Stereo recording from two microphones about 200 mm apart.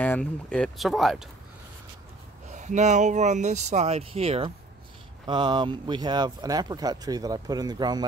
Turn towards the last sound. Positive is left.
turn(degrees=-20)  # may be behind; listen again after turning